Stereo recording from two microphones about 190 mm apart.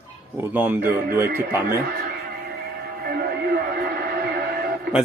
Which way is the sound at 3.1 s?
50° right (ahead or behind).